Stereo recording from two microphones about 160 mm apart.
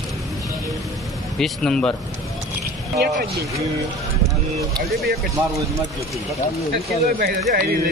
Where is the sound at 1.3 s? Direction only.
5° left (ahead or behind).